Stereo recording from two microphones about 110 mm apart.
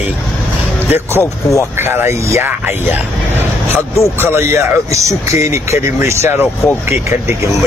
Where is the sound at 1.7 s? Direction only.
20° right (ahead or behind).